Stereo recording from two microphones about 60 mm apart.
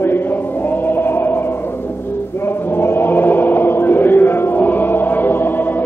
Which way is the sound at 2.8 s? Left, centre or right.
Left.